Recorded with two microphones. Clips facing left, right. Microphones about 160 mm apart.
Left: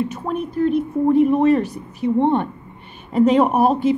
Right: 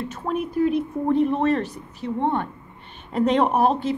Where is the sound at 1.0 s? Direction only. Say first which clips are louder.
Left 6 dB; 10° left (ahead or behind).